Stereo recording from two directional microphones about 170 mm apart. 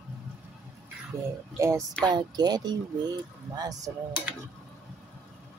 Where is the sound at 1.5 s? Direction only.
20° right (ahead or behind).